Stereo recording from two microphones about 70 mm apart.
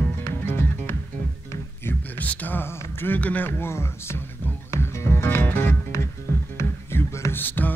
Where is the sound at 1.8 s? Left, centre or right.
Left.